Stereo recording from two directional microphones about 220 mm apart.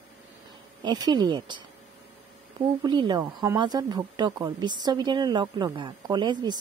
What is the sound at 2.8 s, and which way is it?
A woman's voice, 20° right (ahead or behind).